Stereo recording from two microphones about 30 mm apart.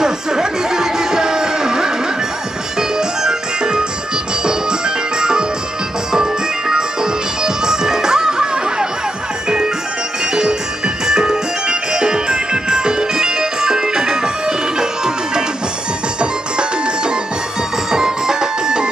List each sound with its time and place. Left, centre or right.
0.0 s music: right
11.1 s music: right